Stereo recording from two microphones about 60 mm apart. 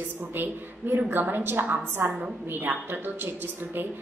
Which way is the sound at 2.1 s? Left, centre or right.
Centre.